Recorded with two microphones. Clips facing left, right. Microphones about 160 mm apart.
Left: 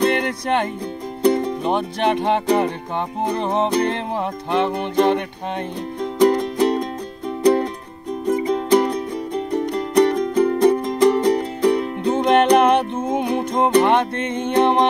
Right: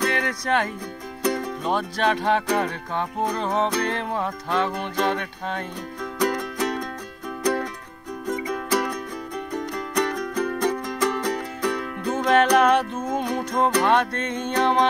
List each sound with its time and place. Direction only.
0.0 s music: 25° left (ahead or behind)
8.3 s music: 30° left (ahead or behind)